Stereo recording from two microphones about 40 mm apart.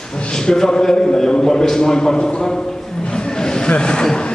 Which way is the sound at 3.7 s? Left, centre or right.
Left.